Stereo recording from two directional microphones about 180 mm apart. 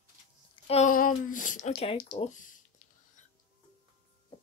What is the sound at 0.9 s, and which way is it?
Speech, 50° left (ahead or behind).